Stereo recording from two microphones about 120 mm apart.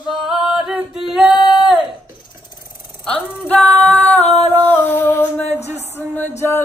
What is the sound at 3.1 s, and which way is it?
Music, 15° left (ahead or behind).